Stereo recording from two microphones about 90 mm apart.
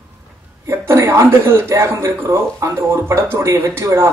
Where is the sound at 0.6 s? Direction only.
30° right (ahead or behind).